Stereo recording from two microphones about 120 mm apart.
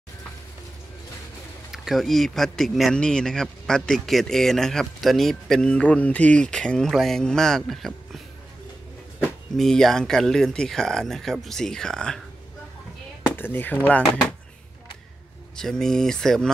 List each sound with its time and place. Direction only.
1.7 s speech: centre (ahead or behind)
9.6 s speech: 5° left (ahead or behind)
13.4 s speech: 15° left (ahead or behind)
15.5 s speech: 5° left (ahead or behind)